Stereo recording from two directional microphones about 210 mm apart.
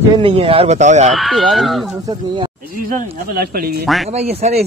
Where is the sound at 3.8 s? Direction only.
Centre (ahead or behind).